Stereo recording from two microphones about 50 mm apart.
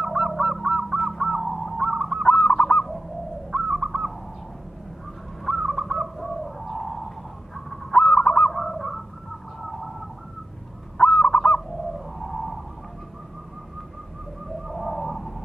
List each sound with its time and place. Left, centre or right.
0.0 s honk: centre
1.8 s goose: centre
2.3 s goose: centre
3.5 s bird: centre
5.4 s bird: centre
7.5 s goose: centre
11.0 s goose: centre
12.2 s whale vocalization: centre
14.7 s bird: centre